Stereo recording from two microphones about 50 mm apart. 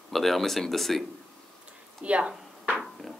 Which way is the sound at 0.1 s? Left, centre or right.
Centre.